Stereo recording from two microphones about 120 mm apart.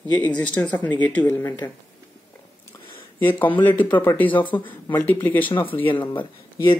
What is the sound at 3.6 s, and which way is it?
Speech, 15° left (ahead or behind).